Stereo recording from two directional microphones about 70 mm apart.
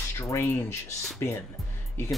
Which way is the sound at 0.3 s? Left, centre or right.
Left.